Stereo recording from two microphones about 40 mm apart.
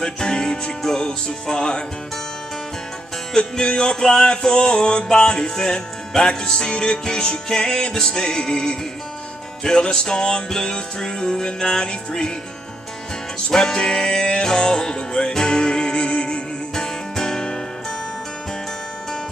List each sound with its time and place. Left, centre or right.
0.0 s music: centre
3.3 s music: centre
13.5 s music: centre